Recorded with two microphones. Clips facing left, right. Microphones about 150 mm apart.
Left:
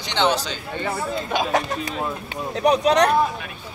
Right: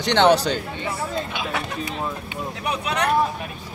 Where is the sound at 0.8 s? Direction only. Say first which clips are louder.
Left 1 dB; 45° left (ahead or behind).